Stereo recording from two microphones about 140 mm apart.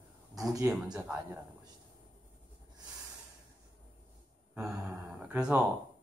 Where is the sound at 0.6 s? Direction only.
5° right (ahead or behind).